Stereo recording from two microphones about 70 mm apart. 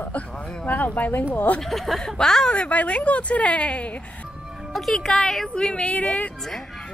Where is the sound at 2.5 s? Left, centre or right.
Centre.